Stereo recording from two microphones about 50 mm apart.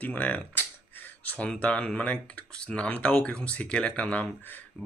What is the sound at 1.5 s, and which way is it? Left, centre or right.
Speech, left.